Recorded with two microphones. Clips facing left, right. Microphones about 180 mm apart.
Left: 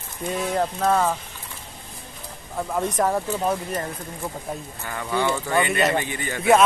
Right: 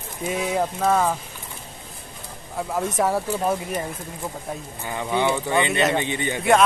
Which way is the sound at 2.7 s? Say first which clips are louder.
Even; 5° right (ahead or behind).